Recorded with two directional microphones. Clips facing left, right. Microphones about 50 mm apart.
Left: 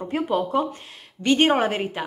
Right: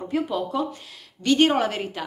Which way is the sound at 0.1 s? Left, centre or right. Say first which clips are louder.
Left 3 dB; left.